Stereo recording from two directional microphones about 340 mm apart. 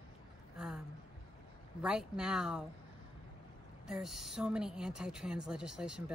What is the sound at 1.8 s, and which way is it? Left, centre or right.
Speech, centre.